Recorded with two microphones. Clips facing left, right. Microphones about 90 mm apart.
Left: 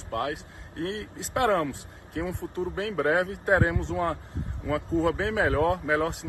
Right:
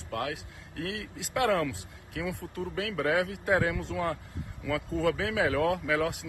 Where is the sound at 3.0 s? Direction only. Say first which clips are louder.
Left 3 dB; 40° left (ahead or behind).